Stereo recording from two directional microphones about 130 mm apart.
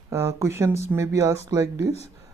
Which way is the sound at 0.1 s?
20° right (ahead or behind).